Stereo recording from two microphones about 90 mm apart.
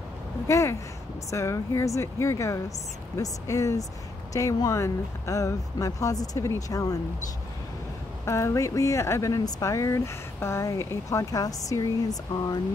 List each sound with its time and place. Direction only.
0.5 s speech: 30° left (ahead or behind)
8.3 s speech: 30° left (ahead or behind)